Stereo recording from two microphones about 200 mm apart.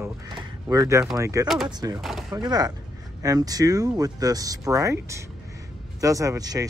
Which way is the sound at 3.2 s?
15° right (ahead or behind).